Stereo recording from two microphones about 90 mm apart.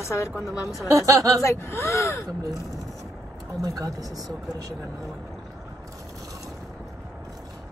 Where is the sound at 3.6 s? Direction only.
40° right (ahead or behind).